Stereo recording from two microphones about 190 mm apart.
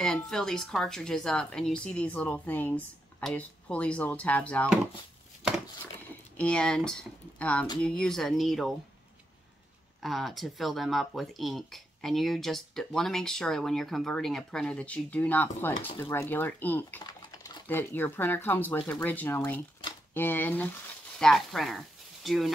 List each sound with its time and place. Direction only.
0.0 s speech: 5° left (ahead or behind)
6.3 s speech: 5° left (ahead or behind)
10.0 s speech: centre (ahead or behind)